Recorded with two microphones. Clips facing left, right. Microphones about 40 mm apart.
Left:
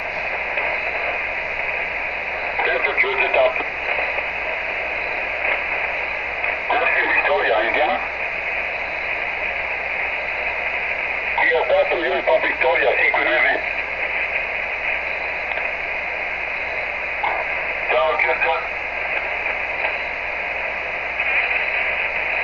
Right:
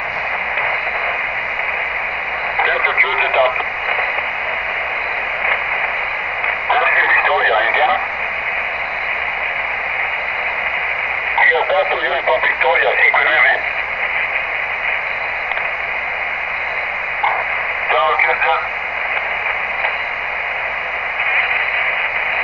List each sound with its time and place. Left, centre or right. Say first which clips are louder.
2.6 s radio: right 4 dB; right
6.7 s radio: right 5 dB; right
11.3 s radio: right 3 dB; right
17.8 s radio: right 4 dB; right